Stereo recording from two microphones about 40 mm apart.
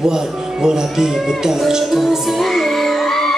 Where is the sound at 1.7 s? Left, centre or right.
Centre.